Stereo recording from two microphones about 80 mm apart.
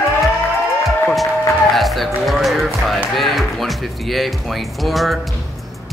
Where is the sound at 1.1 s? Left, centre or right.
Centre.